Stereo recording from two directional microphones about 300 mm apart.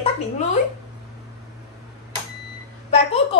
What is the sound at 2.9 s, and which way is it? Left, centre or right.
Speech, centre.